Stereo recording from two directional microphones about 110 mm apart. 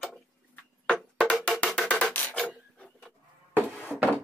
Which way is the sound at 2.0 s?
15° left (ahead or behind).